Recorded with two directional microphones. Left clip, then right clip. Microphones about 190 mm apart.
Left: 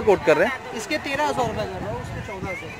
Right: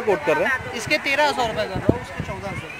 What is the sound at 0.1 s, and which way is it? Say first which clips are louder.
Speech: left 3 dB; 20° left (ahead or behind).